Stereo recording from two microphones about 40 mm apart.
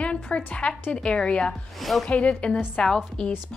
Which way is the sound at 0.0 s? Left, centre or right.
Left.